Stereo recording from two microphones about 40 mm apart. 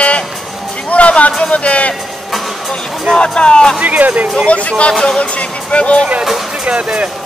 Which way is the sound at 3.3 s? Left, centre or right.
Left.